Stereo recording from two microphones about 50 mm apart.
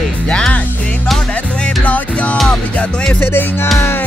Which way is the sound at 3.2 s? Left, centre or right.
Left.